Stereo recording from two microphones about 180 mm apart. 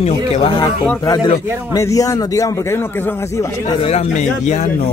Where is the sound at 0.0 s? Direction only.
25° left (ahead or behind).